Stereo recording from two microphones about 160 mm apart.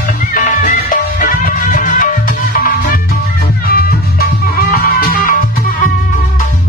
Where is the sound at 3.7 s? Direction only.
70° left (ahead or behind).